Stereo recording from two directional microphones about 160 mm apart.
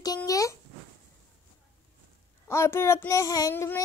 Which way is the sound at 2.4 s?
15° left (ahead or behind).